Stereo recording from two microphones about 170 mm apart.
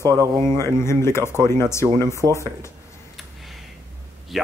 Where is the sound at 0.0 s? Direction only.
20° right (ahead or behind).